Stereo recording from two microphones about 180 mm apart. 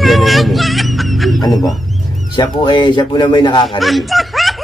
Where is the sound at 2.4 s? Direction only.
25° left (ahead or behind).